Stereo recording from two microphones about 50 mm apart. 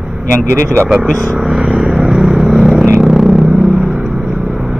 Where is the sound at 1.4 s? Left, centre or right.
Centre.